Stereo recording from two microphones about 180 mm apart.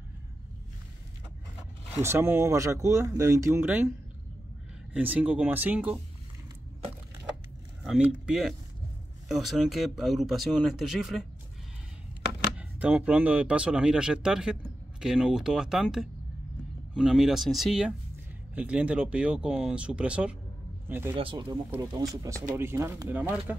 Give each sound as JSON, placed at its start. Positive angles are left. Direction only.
{"t": 2.0, "sound": "speech", "side_deg": -15}
{"t": 4.9, "sound": "speech", "side_deg": -10}
{"t": 7.8, "sound": "speech", "side_deg": 0}
{"t": 12.5, "sound": "speech", "side_deg": -5}
{"t": 21.2, "sound": "speech", "side_deg": -30}
{"t": 22.2, "sound": "speech", "side_deg": -15}